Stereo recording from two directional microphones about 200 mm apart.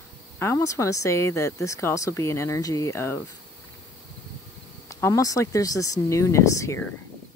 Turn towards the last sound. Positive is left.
turn(degrees=15)  # may be behind; listen again after turning